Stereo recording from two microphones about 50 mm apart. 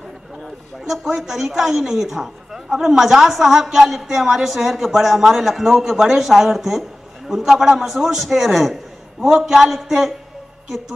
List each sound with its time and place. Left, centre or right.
0.8 s a woman's voice: centre